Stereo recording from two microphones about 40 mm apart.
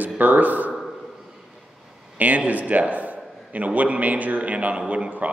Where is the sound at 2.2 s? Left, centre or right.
Right.